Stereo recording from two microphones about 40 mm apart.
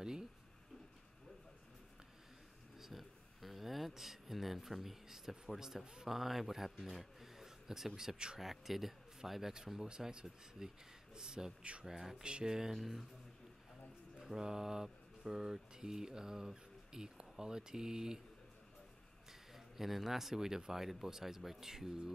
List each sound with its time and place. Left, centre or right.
2.8 s a sound: centre
5.6 s speech: centre
8.4 s speech: centre
9.8 s speech: centre
12.2 s speech: right
12.7 s speech: centre
14.2 s speech: centre
19.5 s speech: centre